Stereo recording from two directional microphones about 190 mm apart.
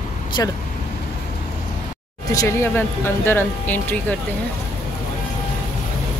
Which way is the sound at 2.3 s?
15° left (ahead or behind).